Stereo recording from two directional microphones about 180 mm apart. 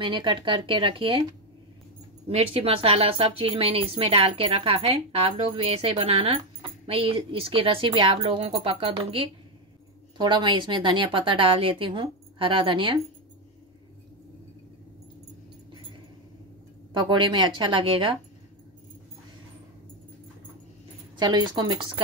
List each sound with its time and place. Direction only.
0.0 s speech: 25° right (ahead or behind)
2.2 s a woman's voice: 35° right (ahead or behind)
16.9 s speech: 25° right (ahead or behind)
21.2 s speech: 25° right (ahead or behind)